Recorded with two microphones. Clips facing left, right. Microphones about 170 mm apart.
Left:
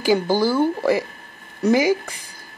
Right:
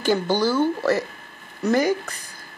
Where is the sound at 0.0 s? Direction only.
10° left (ahead or behind).